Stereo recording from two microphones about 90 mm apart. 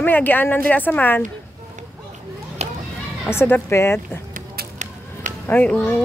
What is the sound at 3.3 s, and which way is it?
Speech, 25° left (ahead or behind).